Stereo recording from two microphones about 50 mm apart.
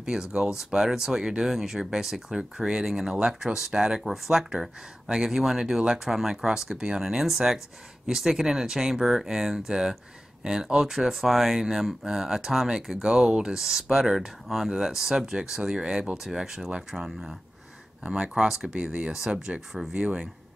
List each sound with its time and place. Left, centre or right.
0.0 s speech: centre
18.0 s speech: right
19.9 s speech: right